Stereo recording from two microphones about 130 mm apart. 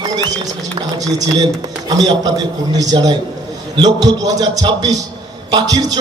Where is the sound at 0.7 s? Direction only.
25° right (ahead or behind).